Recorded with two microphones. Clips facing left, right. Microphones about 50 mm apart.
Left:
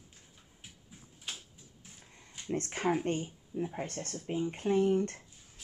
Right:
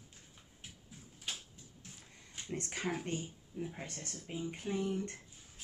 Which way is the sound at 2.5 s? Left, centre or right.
Left.